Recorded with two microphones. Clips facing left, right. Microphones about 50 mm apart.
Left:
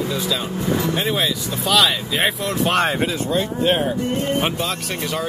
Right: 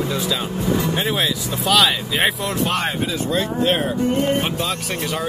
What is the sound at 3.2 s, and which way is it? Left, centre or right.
Speech, centre.